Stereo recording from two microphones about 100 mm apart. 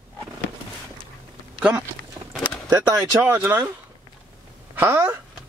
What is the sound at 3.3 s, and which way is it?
Speech, 20° right (ahead or behind).